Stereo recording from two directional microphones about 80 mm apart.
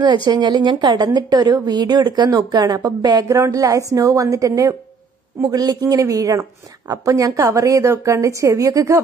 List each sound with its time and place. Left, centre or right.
0.0 s a woman's voice: right